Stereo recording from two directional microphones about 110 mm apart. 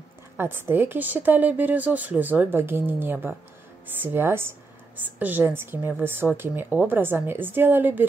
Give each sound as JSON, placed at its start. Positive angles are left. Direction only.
{"t": 0.4, "sound": "a woman's voice", "side_deg": -20}